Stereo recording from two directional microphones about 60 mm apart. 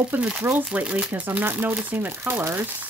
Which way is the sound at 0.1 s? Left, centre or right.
Right.